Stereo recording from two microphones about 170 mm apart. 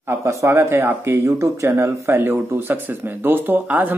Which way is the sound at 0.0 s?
15° right (ahead or behind).